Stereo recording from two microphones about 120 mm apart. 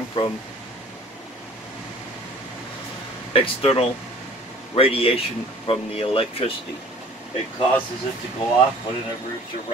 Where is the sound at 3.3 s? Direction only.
55° left (ahead or behind).